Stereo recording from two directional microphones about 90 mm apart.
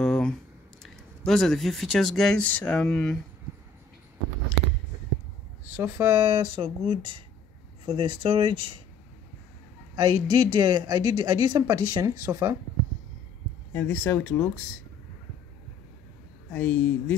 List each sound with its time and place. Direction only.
0.0 s a sound: 5° left (ahead or behind)
1.2 s speech: 5° left (ahead or behind)
2.3 s speech: 15° left (ahead or behind)
5.7 s speech: 20° right (ahead or behind)
6.1 s speech: 60° right (ahead or behind)
9.9 s speech: 55° right (ahead or behind)
11.6 s speech: 40° right (ahead or behind)
13.7 s speech: 25° left (ahead or behind)
16.4 s speech: 20° left (ahead or behind)